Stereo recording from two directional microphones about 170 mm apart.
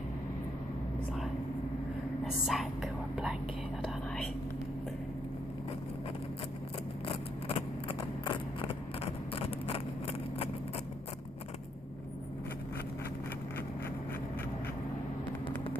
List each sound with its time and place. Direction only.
2.4 s speech: centre (ahead or behind)
7.1 s vehicle: 35° left (ahead or behind)